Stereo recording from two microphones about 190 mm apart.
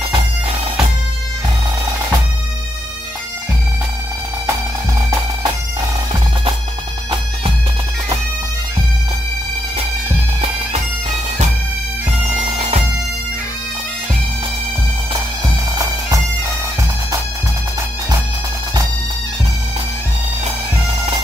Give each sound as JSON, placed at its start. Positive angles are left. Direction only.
{"t": 10.4, "sound": "bagpipes", "side_deg": -35}
{"t": 15.7, "sound": "bagpipes", "side_deg": -20}